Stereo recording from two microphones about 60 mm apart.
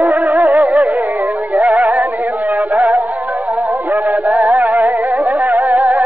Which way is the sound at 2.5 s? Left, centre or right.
Right.